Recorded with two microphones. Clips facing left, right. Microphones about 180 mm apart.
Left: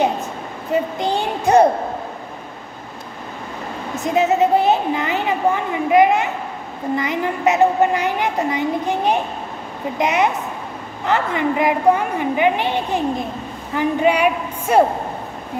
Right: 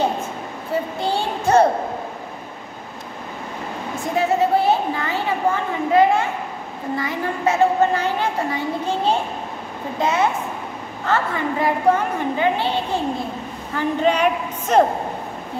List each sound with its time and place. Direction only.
0.7 s a child's voice: 20° left (ahead or behind)
3.9 s a woman's voice: 20° left (ahead or behind)